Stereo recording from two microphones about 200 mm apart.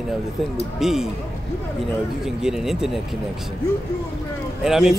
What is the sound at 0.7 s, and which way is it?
Speech, centre (ahead or behind).